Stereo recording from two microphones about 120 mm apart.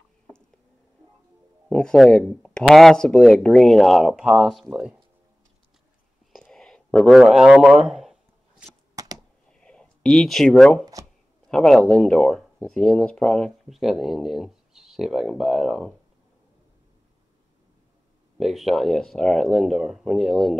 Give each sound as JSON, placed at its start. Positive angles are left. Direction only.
{"t": 1.7, "sound": "speech", "side_deg": 5}
{"t": 6.3, "sound": "a sound", "side_deg": 0}
{"t": 8.9, "sound": "computer keyboard", "side_deg": -30}
{"t": 9.5, "sound": "a sound", "side_deg": 10}
{"t": 11.4, "sound": "speech", "side_deg": 5}
{"t": 18.4, "sound": "speech", "side_deg": 0}